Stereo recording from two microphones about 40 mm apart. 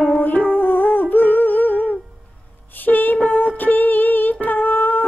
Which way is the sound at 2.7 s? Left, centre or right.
Left.